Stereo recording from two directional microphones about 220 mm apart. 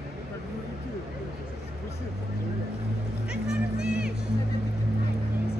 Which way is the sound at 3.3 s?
5° right (ahead or behind).